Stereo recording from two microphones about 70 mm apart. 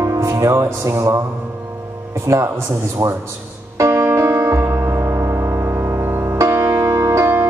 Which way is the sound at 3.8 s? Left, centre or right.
Right.